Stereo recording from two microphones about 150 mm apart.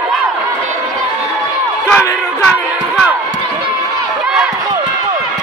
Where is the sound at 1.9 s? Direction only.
15° left (ahead or behind).